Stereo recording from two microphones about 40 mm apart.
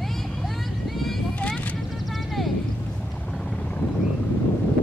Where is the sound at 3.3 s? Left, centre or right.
Centre.